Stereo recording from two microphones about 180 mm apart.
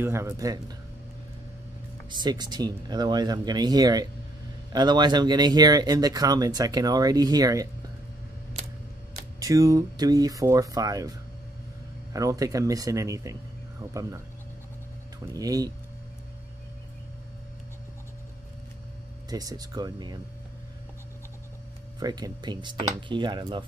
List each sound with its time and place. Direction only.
0.0 s speech: 15° right (ahead or behind)
2.0 s speech: 25° right (ahead or behind)
9.4 s speech: 20° right (ahead or behind)
15.3 s speech: 20° right (ahead or behind)
19.2 s speech: 20° right (ahead or behind)
22.0 s speech: 20° right (ahead or behind)